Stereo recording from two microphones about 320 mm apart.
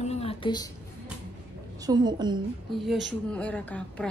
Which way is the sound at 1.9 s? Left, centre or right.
Centre.